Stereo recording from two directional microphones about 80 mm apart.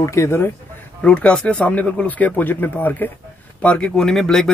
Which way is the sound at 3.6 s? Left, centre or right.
Centre.